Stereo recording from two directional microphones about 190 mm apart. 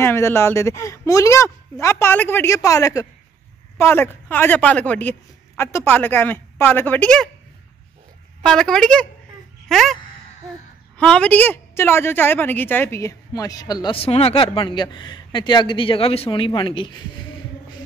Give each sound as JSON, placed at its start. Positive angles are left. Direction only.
{"t": 0.0, "sound": "speech", "side_deg": 15}
{"t": 8.4, "sound": "speech", "side_deg": 5}
{"t": 9.7, "sound": "a sound", "side_deg": 0}
{"t": 11.0, "sound": "a woman's voice", "side_deg": 5}